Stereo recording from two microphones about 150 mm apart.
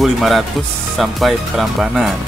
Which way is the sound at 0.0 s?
Centre (ahead or behind).